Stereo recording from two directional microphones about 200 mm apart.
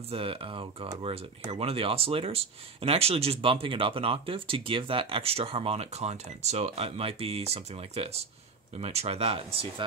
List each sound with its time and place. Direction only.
0.1 s speech: 30° right (ahead or behind)